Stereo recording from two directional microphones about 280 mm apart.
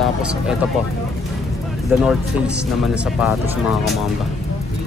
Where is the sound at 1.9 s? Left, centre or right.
Centre.